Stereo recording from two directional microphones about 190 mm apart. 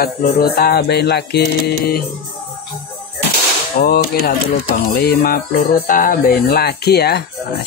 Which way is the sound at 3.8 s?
50° left (ahead or behind).